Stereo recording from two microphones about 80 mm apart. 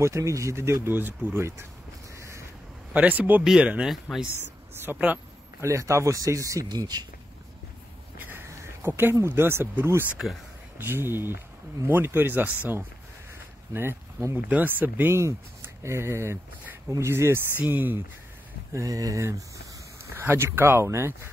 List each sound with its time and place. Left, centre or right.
0.0 s speech: right
2.1 s a sound: right
2.9 s speech: centre
4.9 s speech: right
5.6 s speech: right
6.7 s speech: right
8.2 s a sound: right
9.3 s speech: right
13.7 s speech: right
18.7 s speech: right
20.1 s speech: right